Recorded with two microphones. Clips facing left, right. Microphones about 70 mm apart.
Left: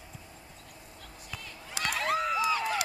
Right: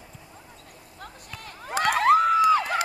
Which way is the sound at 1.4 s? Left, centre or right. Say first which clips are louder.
Right 11 dB; right.